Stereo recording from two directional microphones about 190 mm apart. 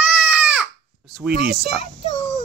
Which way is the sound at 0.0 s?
5° right (ahead or behind).